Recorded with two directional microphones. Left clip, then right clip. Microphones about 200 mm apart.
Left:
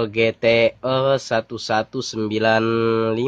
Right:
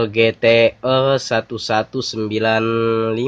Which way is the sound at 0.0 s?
10° left (ahead or behind).